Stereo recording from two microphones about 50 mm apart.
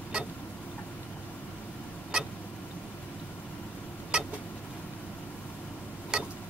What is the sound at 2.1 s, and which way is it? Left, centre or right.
Vehicle, centre.